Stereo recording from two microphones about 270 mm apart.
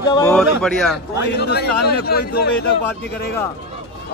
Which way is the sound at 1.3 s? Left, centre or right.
Left.